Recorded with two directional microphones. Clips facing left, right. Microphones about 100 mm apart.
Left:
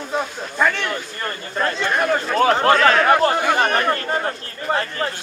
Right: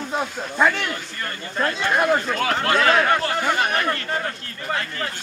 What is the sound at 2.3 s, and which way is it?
Speech, 35° left (ahead or behind).